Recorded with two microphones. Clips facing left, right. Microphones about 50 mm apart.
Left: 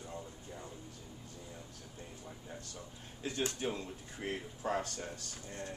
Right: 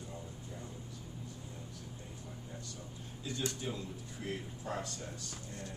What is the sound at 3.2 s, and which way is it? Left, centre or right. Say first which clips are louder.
Speech: left 3 dB; left.